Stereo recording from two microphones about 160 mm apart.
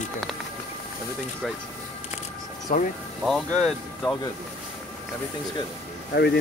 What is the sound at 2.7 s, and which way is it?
Speech, 55° left (ahead or behind).